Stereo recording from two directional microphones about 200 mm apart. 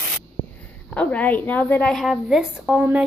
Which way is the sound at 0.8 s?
5° left (ahead or behind).